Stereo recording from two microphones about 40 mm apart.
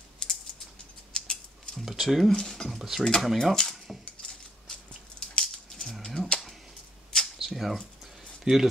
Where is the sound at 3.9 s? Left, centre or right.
Centre.